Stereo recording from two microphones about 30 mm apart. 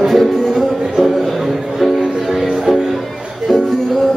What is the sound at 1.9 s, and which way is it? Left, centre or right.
Music, right.